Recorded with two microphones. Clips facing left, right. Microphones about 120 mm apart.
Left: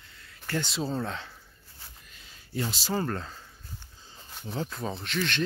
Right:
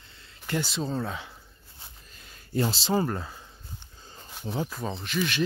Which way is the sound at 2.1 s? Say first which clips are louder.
Right 5 dB; 45° right (ahead or behind).